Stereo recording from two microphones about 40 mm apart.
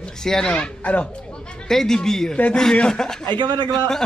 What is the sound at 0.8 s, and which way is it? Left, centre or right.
Speech, left.